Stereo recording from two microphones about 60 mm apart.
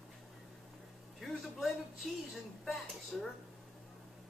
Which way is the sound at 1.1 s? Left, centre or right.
Centre.